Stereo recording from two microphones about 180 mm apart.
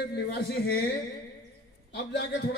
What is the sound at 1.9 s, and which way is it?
Speech, 70° left (ahead or behind).